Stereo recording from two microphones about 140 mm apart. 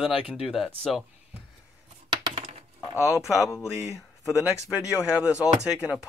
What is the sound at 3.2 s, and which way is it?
Speech, 20° left (ahead or behind).